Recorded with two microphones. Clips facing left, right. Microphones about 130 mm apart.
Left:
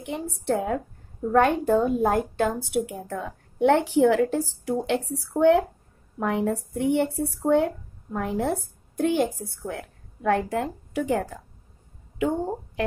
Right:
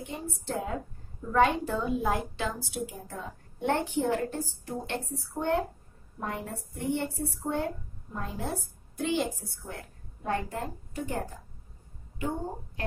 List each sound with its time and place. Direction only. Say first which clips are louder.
0.0 s a woman's voice: left 6 dB; 80° left
1.3 s a woman's voice: left 5 dB; 55° left (ahead or behind)
9.4 s a woman's voice: left 9 dB; 65° left (ahead or behind); by 12.8 s 90° left